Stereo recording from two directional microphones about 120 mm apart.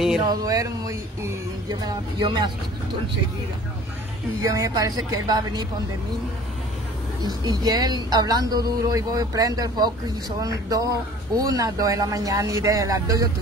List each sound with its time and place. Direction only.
0.2 s speech: 35° right (ahead or behind)
4.4 s speech: 25° right (ahead or behind)
7.2 s speech: 35° right (ahead or behind)